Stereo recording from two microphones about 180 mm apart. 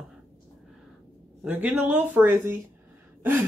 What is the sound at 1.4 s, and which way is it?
Speech, 10° right (ahead or behind).